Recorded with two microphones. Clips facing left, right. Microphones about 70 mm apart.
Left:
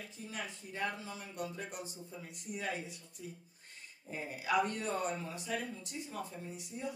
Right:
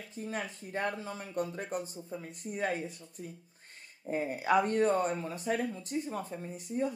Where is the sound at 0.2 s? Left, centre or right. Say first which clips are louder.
Right 7 dB; right.